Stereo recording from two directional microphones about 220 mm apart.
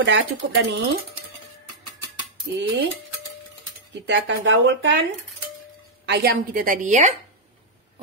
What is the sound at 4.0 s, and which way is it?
Speech, 55° right (ahead or behind).